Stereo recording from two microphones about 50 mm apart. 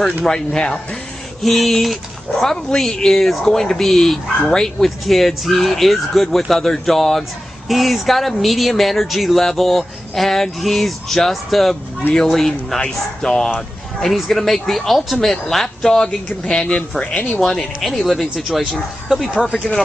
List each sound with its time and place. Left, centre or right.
0.2 s a man's voice: centre